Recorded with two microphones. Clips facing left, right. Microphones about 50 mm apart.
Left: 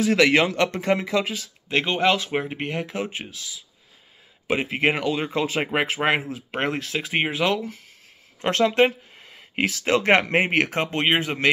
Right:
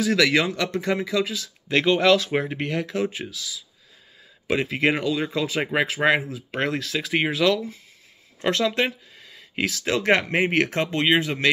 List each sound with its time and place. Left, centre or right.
0.0 s speech: left
1.7 s speech: centre